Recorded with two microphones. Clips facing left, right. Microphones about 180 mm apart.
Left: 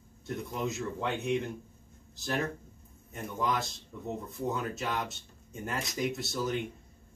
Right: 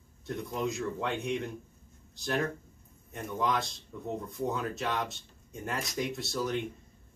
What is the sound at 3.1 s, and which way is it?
Speech, centre (ahead or behind).